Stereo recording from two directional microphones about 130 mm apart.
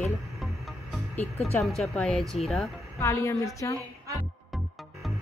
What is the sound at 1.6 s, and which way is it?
Speech, 5° left (ahead or behind).